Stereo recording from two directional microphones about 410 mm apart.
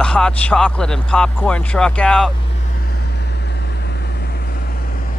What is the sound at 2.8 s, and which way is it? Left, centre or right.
Vehicle, left.